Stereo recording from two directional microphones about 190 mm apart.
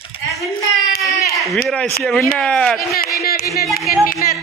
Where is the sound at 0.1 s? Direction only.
30° left (ahead or behind).